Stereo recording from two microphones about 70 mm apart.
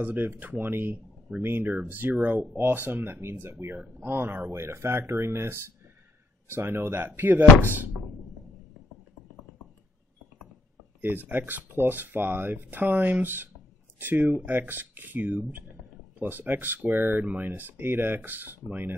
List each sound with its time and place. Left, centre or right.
0.0 s speech: right
11.0 s speech: right